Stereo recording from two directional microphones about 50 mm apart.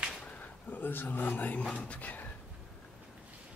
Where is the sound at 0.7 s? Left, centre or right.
Left.